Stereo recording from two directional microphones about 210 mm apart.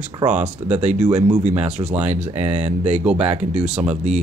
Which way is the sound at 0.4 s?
10° right (ahead or behind).